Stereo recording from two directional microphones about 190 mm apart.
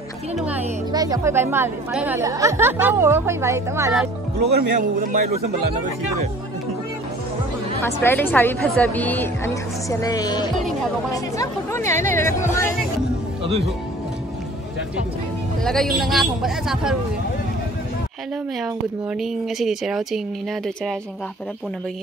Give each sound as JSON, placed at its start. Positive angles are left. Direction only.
{"t": 0.9, "sound": "speech", "side_deg": -20}
{"t": 4.6, "sound": "a man's voice", "side_deg": -50}
{"t": 7.8, "sound": "a woman's voice", "side_deg": 10}
{"t": 13.4, "sound": "music", "side_deg": -30}
{"t": 15.6, "sound": "speech", "side_deg": 0}
{"t": 19.1, "sound": "speech", "side_deg": 0}